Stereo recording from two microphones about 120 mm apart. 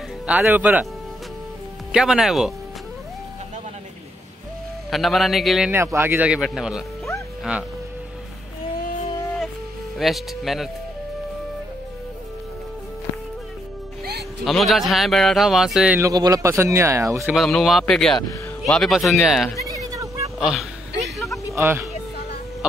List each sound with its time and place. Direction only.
0.3 s speech: 10° right (ahead or behind)
1.9 s speech: 5° right (ahead or behind)
4.9 s speech: centre (ahead or behind)
5.7 s speech: 20° right (ahead or behind)
9.9 s speech: centre (ahead or behind)
14.4 s speech: centre (ahead or behind)
16.0 s speech: 30° right (ahead or behind)
17.3 s speech: centre (ahead or behind)
19.8 s a sound: 30° right (ahead or behind)
20.3 s speech: 5° right (ahead or behind)
21.5 s speech: 20° right (ahead or behind)